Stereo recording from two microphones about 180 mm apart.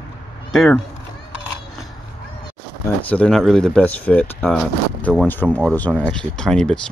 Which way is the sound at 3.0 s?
5° left (ahead or behind).